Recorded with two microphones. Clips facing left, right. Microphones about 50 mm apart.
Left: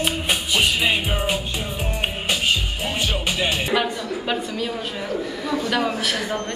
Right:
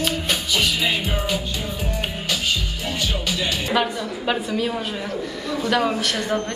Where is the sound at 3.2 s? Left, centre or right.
Left.